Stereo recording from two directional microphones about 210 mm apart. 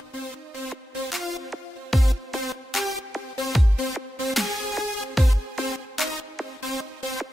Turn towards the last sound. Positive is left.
turn(degrees=0)  # may be behind; listen again after turning